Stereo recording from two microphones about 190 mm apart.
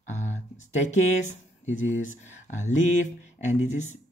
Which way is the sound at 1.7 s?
40° left (ahead or behind).